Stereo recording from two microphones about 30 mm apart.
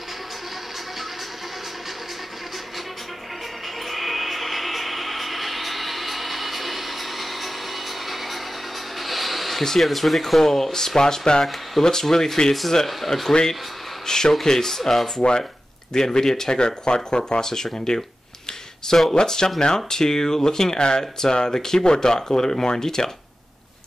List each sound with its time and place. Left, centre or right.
3.9 s a sound: centre
9.0 s rub: centre
10.4 s speech: centre
11.0 s speech: left; by 13.3 s centre
14.0 s speech: centre
14.8 s speech: centre
15.1 s speech: left
16.5 s speech: left
19.1 s speech: left